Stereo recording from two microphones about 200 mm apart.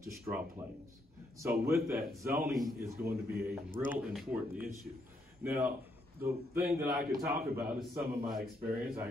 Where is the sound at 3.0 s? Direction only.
10° right (ahead or behind).